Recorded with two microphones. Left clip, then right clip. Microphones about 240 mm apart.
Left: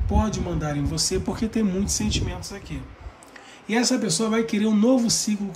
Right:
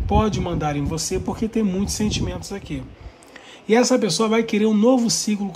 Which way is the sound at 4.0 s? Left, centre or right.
Centre.